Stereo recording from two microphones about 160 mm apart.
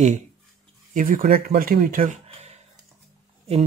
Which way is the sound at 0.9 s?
60° right (ahead or behind).